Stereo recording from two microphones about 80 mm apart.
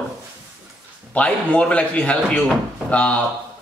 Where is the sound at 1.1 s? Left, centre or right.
Centre.